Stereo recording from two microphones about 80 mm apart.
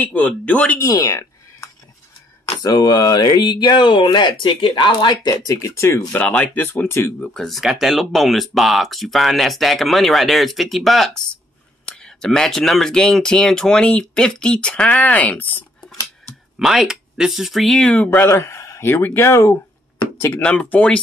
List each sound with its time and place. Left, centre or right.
0.0 s speech: centre
0.8 s a sound: left
2.6 s speech: left
6.1 s speech: centre
7.3 s speech: centre; by 15.6 s left
16.5 s speech: centre
17.8 s speech: centre
18.2 s speech: left
20.3 s speech: centre